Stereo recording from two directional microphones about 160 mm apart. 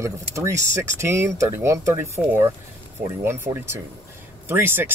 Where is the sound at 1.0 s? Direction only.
15° right (ahead or behind).